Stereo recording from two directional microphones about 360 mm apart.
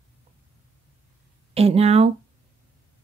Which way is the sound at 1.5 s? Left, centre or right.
Centre.